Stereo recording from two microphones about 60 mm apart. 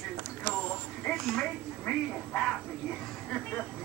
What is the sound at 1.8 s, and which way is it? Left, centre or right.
Bow-wow, centre.